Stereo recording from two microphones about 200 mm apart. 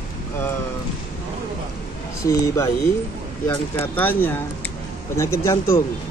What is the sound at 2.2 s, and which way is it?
Speech, 15° left (ahead or behind).